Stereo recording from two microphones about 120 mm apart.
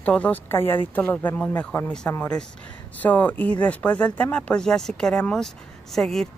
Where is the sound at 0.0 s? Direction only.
10° left (ahead or behind).